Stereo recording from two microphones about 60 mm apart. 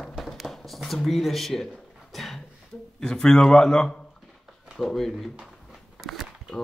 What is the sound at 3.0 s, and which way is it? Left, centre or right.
A man's voice, centre.